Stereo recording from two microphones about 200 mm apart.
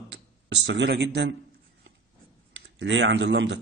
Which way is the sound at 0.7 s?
60° right (ahead or behind).